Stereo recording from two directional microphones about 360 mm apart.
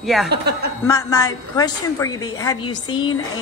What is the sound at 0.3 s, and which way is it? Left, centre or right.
Speech, right.